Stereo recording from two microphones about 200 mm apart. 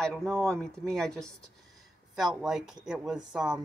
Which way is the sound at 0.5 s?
5° left (ahead or behind).